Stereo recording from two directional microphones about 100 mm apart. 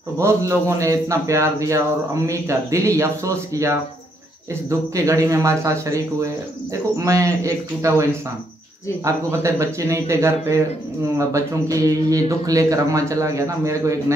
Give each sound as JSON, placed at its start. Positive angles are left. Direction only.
{"t": 0.2, "sound": "a man's voice", "side_deg": -30}